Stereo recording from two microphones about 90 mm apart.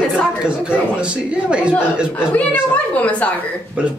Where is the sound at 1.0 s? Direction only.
10° right (ahead or behind).